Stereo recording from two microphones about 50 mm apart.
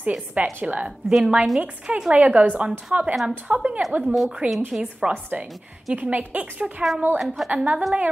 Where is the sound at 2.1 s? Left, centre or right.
Right.